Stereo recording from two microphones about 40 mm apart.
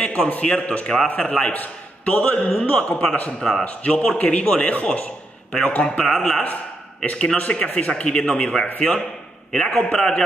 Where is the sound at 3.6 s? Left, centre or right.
Left.